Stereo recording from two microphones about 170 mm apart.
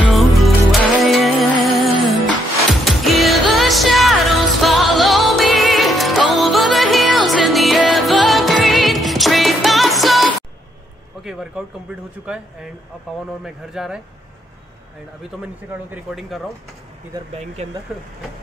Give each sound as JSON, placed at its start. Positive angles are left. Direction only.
{"t": 0.0, "sound": "music", "side_deg": 0}
{"t": 13.4, "sound": "speech", "side_deg": -5}
{"t": 15.4, "sound": "speech", "side_deg": -5}
{"t": 17.6, "sound": "speech", "side_deg": -40}